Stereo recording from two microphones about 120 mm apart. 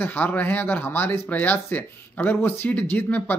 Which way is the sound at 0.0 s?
15° left (ahead or behind).